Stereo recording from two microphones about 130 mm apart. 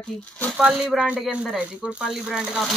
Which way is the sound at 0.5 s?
5° right (ahead or behind).